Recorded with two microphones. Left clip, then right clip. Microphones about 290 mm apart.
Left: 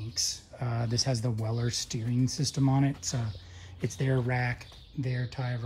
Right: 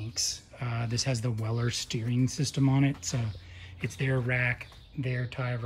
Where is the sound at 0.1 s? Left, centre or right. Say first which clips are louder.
Left 1 dB; centre.